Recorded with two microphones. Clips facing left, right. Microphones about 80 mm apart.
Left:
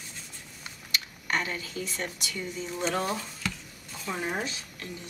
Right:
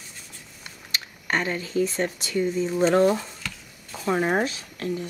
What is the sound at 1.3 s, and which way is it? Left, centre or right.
Speech, right.